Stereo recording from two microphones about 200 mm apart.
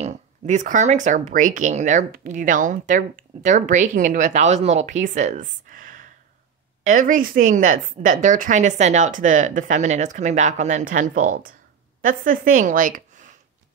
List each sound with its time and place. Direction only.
0.0 s a woman's voice: 35° right (ahead or behind)